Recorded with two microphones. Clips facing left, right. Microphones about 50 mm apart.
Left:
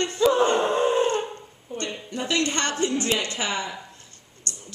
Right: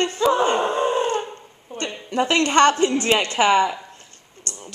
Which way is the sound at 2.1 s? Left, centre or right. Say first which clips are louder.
Right 7 dB; right.